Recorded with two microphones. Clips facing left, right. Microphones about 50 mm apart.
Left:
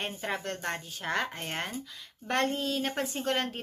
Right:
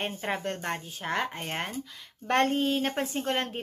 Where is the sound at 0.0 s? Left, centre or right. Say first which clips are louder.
Right 3 dB; right.